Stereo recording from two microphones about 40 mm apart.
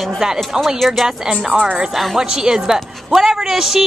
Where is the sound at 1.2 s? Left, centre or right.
Centre.